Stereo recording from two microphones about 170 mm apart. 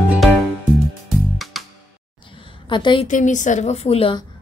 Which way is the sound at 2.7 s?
30° left (ahead or behind).